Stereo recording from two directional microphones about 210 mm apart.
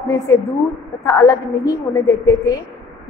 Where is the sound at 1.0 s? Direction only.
15° left (ahead or behind).